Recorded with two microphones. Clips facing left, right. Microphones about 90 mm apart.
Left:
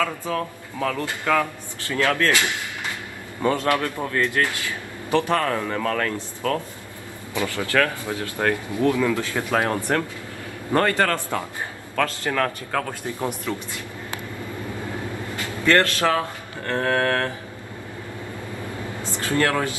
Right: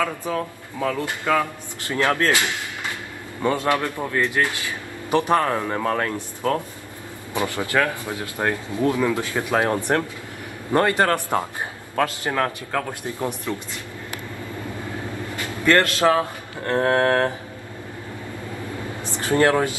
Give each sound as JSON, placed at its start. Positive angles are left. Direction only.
{"t": 0.0, "sound": "a man's voice", "side_deg": -20}
{"t": 3.4, "sound": "a man's voice", "side_deg": -20}
{"t": 15.3, "sound": "a man's voice", "side_deg": -20}
{"t": 19.0, "sound": "speech", "side_deg": -20}